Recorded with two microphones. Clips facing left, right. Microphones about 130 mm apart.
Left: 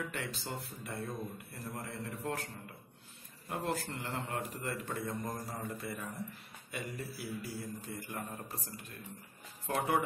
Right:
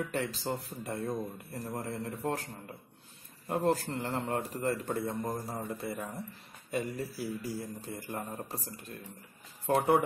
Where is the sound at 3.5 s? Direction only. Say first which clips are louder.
Right 7 dB; 35° right (ahead or behind).